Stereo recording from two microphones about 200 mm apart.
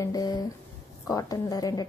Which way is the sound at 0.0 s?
20° left (ahead or behind).